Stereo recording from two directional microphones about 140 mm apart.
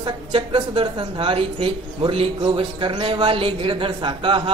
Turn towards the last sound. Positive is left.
turn(degrees=-40)  # may be behind; listen again after turning